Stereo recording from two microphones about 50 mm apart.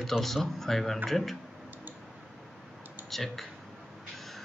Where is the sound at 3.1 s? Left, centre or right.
Centre.